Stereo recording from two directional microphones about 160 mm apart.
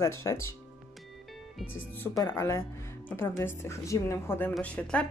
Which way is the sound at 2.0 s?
20° left (ahead or behind).